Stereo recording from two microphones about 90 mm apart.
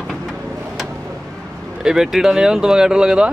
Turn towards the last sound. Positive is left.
turn(degrees=-10)  # may be behind; listen again after turning